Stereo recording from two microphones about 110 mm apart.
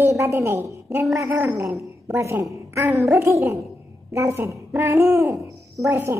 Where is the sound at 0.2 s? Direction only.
25° right (ahead or behind).